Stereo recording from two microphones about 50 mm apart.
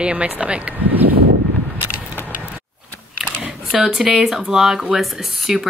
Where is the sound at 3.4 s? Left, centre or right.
Right.